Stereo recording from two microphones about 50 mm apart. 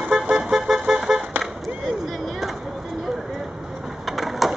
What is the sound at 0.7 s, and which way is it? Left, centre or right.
Vehicle, right.